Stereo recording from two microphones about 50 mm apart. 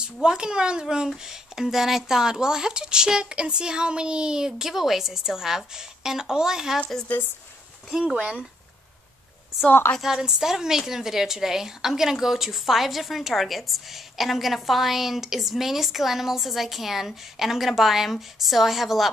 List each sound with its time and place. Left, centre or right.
0.0 s speech: centre
7.9 s speech: centre
9.7 s a woman's voice: left
10.0 s a woman's voice: centre